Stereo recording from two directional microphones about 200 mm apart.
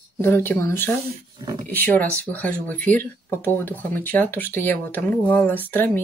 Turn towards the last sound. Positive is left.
turn(degrees=10)  # may be behind; listen again after turning